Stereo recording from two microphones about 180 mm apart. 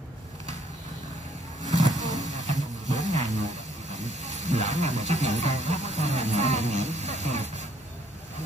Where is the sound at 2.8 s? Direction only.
40° right (ahead or behind).